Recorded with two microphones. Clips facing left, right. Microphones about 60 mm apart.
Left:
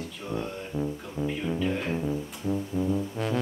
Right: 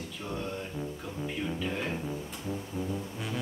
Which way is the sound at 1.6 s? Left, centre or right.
Centre.